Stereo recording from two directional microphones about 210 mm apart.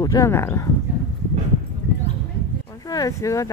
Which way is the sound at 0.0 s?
15° left (ahead or behind).